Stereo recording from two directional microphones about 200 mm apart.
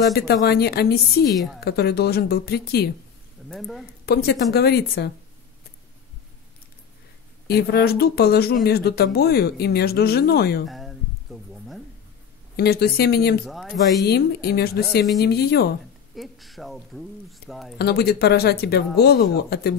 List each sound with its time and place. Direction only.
0.1 s speech: 50° left (ahead or behind)
1.3 s speech: centre (ahead or behind)
1.6 s speech: 55° left (ahead or behind)
3.4 s speech: centre (ahead or behind)
4.0 s speech: 55° left (ahead or behind)
7.4 s speech: 55° left (ahead or behind)
10.7 s a sound: centre (ahead or behind)
12.5 s speech: 55° left (ahead or behind)
13.5 s speech: centre (ahead or behind)
14.0 s speech: 55° left (ahead or behind)
16.2 s speech: centre (ahead or behind)
17.7 s speech: 55° left (ahead or behind)